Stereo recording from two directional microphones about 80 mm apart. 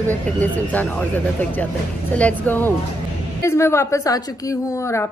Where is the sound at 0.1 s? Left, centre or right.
Left.